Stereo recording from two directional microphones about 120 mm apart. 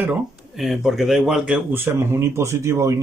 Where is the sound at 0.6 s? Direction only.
Centre (ahead or behind).